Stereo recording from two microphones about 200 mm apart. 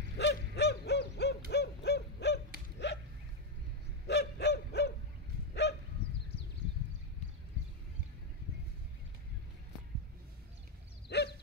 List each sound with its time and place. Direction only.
0.2 s a sound: 55° left (ahead or behind)
1.5 s owl: 55° left (ahead or behind)
2.8 s a sound: 60° left (ahead or behind)
4.1 s bow-wow: 55° left (ahead or behind)
5.5 s dog: 60° left (ahead or behind)
11.1 s dog: 55° left (ahead or behind)